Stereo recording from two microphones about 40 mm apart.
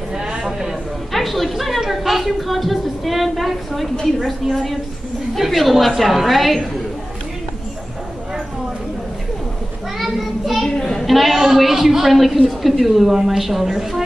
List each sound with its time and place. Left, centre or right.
0.1 s a sound: centre
0.5 s a woman's voice: centre
9.9 s child singing: centre
10.6 s children playing: centre
11.1 s a woman's voice: centre